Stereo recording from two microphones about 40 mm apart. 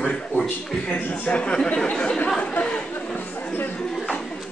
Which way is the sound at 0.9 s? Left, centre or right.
Left.